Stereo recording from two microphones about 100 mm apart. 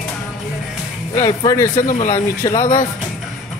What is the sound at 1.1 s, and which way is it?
Speech, 35° left (ahead or behind).